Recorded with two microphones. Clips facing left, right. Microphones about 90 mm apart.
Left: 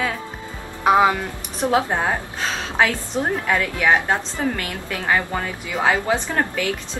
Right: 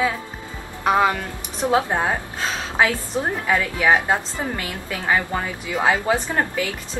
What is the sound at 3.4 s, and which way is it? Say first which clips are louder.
A woman's voice: right 2 dB; 10° right (ahead or behind).